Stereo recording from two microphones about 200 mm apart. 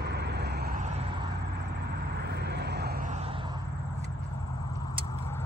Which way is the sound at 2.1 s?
55° right (ahead or behind).